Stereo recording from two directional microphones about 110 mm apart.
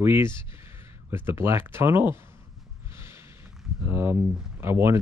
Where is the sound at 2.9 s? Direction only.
25° right (ahead or behind).